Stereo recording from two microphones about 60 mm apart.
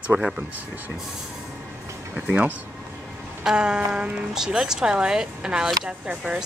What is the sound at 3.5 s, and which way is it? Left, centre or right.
Speech, centre.